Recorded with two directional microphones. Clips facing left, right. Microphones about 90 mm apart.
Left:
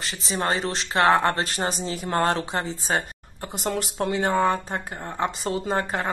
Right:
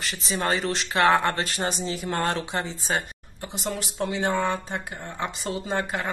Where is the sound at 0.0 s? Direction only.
35° left (ahead or behind).